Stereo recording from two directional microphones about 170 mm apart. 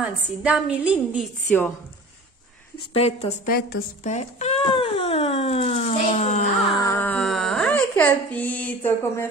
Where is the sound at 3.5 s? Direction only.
60° left (ahead or behind).